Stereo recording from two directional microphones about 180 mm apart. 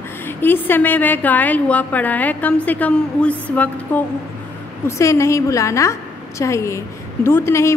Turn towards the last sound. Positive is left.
turn(degrees=15)  # may be behind; listen again after turning